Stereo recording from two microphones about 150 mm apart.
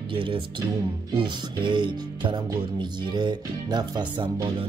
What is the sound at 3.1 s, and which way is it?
Music, 30° right (ahead or behind).